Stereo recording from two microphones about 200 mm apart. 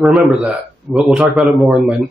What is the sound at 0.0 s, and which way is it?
A man's voice, 5° right (ahead or behind).